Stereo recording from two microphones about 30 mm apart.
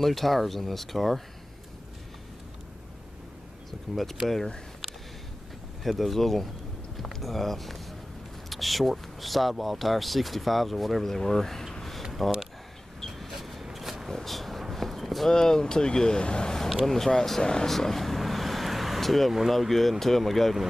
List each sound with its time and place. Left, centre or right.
0.0 s speech: centre
3.9 s speech: centre
5.9 s speech: centre
13.3 s a sound: centre
14.2 s speech: centre
14.7 s a sound: centre
15.2 s speech: centre
16.8 s speech: centre
17.6 s vehicle: centre
19.7 s speech: centre